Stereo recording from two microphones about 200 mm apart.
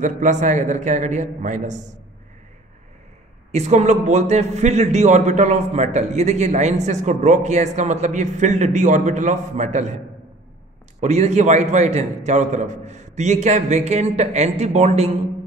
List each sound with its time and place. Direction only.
0.0 s a man's voice: 40° right (ahead or behind)
3.5 s a man's voice: 35° right (ahead or behind)